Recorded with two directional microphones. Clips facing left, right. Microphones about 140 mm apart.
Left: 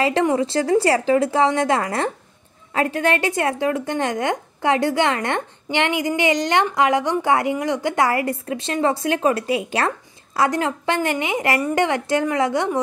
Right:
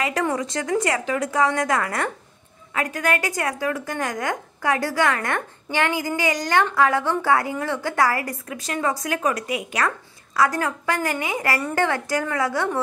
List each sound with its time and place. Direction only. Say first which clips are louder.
0.0 s a woman's voice: left 5 dB; 25° left (ahead or behind)